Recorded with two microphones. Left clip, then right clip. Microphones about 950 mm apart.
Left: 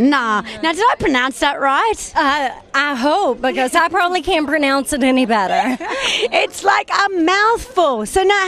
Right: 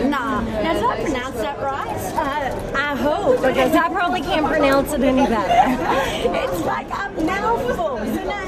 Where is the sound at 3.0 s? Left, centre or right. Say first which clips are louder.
Left 2 dB; left.